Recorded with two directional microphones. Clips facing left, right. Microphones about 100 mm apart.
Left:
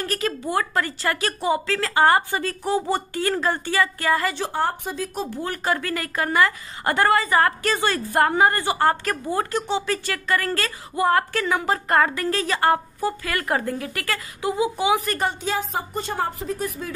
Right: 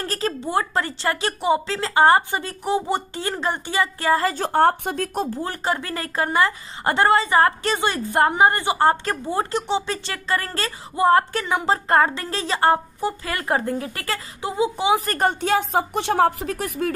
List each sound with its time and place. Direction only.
0.0 s a woman's voice: 30° right (ahead or behind)
4.5 s a woman's voice: 60° right (ahead or behind)
5.3 s a woman's voice: 30° right (ahead or behind)
15.0 s speech: 45° right (ahead or behind); by 16.9 s 75° right (ahead or behind)